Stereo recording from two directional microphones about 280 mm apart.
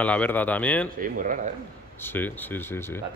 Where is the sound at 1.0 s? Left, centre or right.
Right.